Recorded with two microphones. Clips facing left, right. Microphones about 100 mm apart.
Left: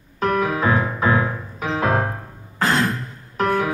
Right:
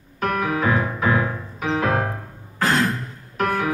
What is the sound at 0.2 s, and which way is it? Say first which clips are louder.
Music: left 2 dB; 30° left (ahead or behind).